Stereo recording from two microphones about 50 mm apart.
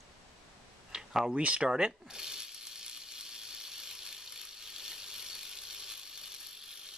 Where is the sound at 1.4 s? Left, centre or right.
Right.